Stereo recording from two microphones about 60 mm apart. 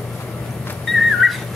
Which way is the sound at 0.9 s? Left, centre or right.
Centre.